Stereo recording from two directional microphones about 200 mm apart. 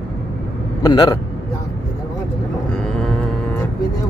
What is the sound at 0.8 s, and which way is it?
Speech, 20° left (ahead or behind).